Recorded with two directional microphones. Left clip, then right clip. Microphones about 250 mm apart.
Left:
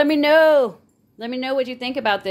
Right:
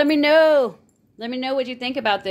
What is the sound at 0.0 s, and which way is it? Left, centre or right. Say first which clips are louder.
A woman's voice: left 1 dB; centre.